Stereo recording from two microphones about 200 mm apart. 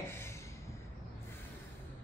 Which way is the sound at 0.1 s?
15° left (ahead or behind).